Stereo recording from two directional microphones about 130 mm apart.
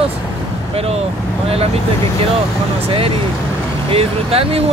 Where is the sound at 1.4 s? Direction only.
50° right (ahead or behind).